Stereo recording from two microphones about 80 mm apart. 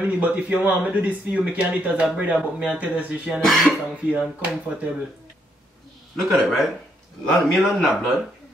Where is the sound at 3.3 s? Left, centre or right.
Centre.